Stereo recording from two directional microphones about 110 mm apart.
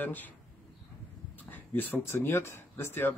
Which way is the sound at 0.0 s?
15° left (ahead or behind).